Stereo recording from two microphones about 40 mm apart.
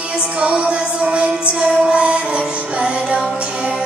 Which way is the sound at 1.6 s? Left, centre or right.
Centre.